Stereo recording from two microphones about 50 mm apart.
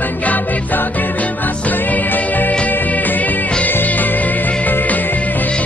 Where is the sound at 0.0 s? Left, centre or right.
Left.